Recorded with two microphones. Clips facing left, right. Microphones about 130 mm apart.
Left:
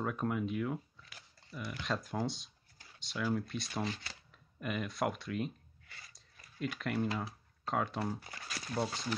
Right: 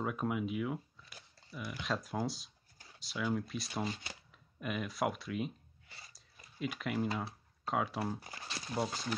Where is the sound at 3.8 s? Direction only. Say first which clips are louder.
Even; 15° right (ahead or behind).